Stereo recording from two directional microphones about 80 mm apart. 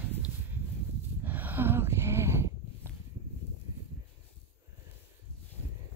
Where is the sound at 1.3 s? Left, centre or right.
Right.